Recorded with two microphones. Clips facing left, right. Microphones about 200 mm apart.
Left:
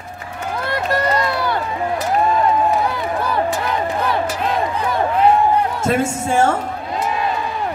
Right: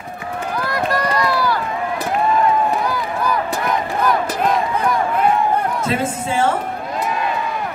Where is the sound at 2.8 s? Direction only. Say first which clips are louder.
Even; 25° left (ahead or behind).